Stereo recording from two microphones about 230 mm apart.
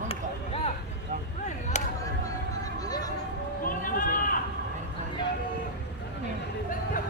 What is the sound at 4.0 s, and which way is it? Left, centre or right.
Run, left.